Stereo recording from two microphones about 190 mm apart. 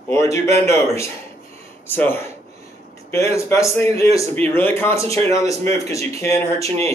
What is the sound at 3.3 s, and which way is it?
A man's voice, 15° left (ahead or behind).